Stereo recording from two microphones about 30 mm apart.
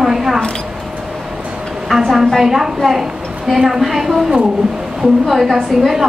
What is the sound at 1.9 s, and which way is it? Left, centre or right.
A woman's voice, centre.